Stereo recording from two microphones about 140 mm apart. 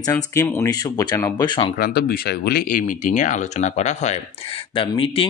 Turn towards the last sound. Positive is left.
turn(degrees=40)  # may be behind; listen again after turning